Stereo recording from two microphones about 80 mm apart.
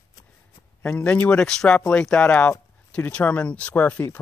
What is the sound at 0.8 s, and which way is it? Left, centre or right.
Speech, centre.